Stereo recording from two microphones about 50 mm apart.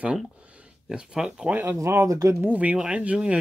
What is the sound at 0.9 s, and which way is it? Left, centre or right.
Speech, centre.